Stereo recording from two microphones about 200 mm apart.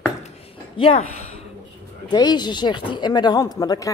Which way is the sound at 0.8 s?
30° left (ahead or behind).